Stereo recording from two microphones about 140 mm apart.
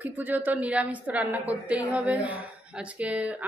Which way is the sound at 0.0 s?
10° right (ahead or behind).